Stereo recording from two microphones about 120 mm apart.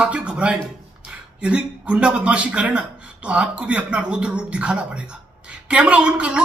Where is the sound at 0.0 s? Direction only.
10° right (ahead or behind).